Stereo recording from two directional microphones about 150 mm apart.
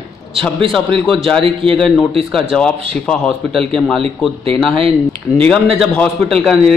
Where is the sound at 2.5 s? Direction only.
5° left (ahead or behind).